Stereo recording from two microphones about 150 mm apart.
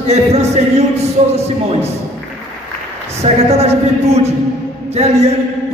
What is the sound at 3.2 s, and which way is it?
Speech, 45° right (ahead or behind).